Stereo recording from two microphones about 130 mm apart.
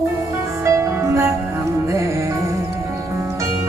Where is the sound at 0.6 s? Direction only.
20° right (ahead or behind).